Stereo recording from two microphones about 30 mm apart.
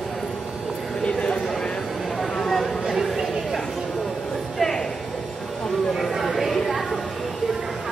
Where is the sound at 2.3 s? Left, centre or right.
Centre.